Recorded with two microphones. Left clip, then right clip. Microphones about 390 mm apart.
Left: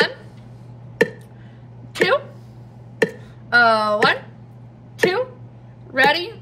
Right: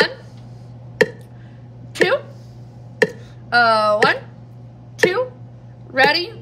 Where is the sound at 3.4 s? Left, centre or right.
Centre.